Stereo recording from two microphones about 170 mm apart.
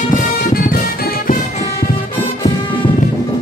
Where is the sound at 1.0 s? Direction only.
55° left (ahead or behind).